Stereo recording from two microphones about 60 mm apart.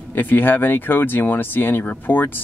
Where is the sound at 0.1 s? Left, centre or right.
Left.